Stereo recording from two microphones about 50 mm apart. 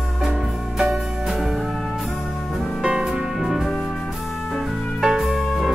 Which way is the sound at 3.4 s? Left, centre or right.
Centre.